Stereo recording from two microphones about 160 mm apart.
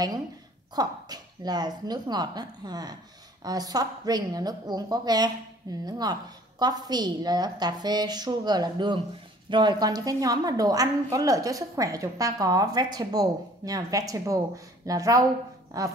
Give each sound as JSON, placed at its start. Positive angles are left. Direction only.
{"t": 0.7, "sound": "a woman's voice", "side_deg": -25}